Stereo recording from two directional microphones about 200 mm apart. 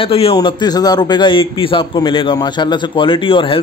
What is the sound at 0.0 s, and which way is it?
A man's voice, 30° left (ahead or behind).